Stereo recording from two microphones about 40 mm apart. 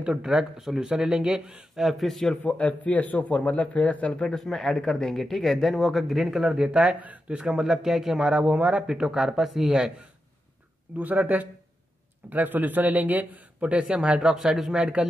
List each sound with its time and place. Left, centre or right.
0.0 s speech: centre
1.8 s speech: centre
2.4 s speech: left
4.2 s speech: centre
6.4 s speech: right
8.3 s a man's voice: right
8.8 s speech: centre
11.0 s a man's voice: right
14.3 s speech: centre
14.8 s speech: right